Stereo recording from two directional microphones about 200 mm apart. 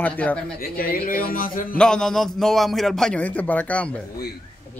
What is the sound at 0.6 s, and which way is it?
A man's voice, 45° left (ahead or behind).